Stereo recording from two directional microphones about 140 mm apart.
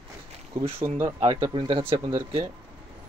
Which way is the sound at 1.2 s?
40° right (ahead or behind).